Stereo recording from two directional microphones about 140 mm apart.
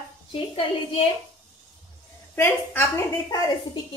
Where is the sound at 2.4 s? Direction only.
15° left (ahead or behind).